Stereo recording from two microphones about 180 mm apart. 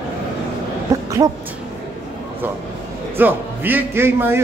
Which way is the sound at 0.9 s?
20° right (ahead or behind).